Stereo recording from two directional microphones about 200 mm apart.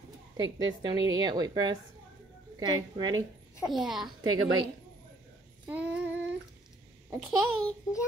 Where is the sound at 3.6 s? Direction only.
Centre (ahead or behind).